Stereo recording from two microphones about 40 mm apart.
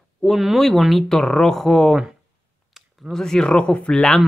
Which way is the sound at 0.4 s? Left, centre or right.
Centre.